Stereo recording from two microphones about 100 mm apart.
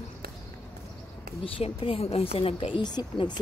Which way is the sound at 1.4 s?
65° left (ahead or behind).